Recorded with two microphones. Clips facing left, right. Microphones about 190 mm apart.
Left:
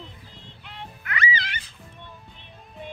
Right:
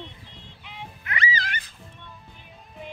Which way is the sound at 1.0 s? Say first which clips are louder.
Left 1 dB; 30° right (ahead or behind).